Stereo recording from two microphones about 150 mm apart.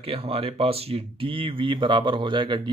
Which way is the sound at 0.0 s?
40° right (ahead or behind).